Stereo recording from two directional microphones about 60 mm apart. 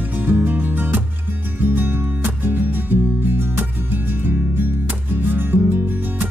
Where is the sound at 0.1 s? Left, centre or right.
Right.